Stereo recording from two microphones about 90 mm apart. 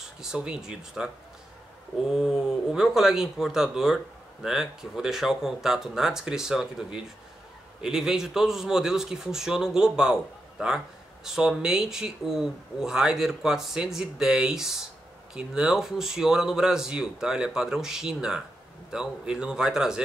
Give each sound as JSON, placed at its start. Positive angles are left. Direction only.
{"t": 0.2, "sound": "a man's voice", "side_deg": -10}